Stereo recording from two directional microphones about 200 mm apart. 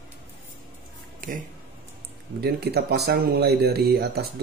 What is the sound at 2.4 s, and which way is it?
Speech, 55° right (ahead or behind).